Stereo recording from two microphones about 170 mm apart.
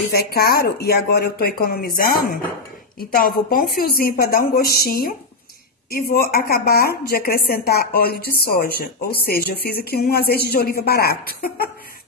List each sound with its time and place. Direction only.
0.1 s a woman's voice: 65° left (ahead or behind)
3.0 s a woman's voice: 60° left (ahead or behind)